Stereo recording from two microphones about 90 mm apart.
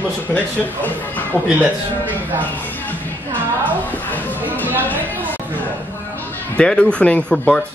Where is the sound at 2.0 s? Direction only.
20° right (ahead or behind).